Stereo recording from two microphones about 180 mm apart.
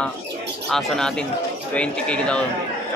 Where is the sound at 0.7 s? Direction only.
5° left (ahead or behind).